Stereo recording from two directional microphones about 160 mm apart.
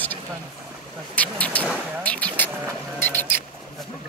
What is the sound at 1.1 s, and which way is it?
Vehicle, 10° left (ahead or behind).